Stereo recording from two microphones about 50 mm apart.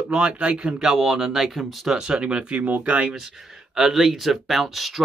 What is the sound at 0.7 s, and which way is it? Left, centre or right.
Speech, centre.